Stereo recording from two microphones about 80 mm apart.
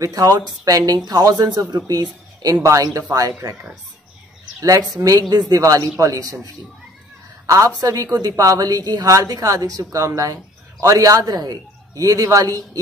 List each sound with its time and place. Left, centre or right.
0.0 s a woman's voice: right
4.6 s a woman's voice: right